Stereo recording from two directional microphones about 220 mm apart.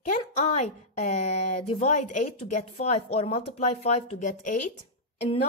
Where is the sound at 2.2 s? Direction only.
90° left.